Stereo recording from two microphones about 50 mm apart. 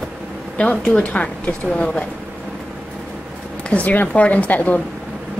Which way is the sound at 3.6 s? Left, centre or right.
Left.